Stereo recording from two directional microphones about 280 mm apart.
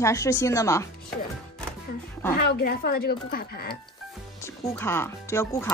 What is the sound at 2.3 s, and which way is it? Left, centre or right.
Speech, left.